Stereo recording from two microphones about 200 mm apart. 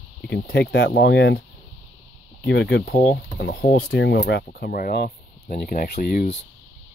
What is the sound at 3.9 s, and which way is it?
Speech, 60° left (ahead or behind).